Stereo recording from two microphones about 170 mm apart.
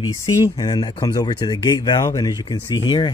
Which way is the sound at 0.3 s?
20° left (ahead or behind).